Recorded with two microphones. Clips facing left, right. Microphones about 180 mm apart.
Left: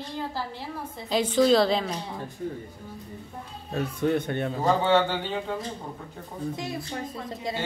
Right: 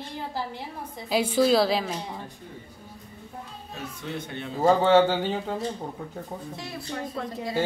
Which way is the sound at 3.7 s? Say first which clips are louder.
Left 10 dB; 55° left (ahead or behind).